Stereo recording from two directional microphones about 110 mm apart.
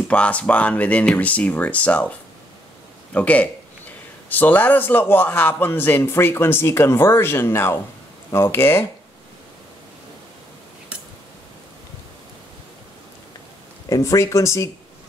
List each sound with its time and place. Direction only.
0.1 s a man's voice: 10° left (ahead or behind)
13.8 s a man's voice: 30° left (ahead or behind)